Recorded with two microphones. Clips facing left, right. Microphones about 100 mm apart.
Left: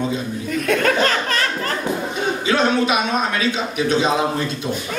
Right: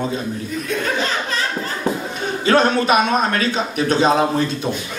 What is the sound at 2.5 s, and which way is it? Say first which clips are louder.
A man's voice: right 4 dB; 45° right (ahead or behind).